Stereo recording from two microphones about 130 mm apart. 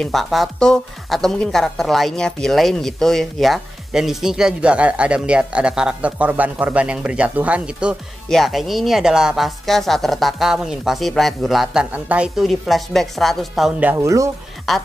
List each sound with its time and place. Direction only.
0.0 s speech: centre (ahead or behind)
13.7 s speech: 15° right (ahead or behind)
14.7 s speech: centre (ahead or behind)